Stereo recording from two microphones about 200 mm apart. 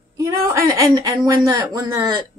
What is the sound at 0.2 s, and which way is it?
A woman's voice, 15° right (ahead or behind).